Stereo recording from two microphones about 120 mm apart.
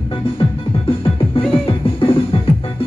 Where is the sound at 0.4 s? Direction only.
50° left (ahead or behind).